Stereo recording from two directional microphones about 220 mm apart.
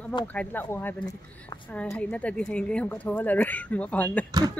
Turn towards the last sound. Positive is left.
turn(degrees=-15)  # may be behind; listen again after turning